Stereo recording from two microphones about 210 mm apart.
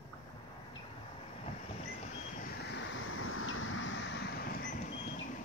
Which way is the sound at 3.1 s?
80° left.